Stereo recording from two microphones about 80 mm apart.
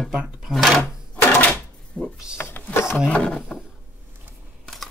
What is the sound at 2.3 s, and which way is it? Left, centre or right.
Sewing machine, left.